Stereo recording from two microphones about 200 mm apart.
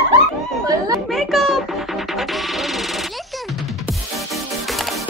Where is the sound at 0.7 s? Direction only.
15° right (ahead or behind).